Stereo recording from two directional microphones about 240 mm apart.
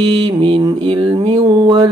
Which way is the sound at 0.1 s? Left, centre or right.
Centre.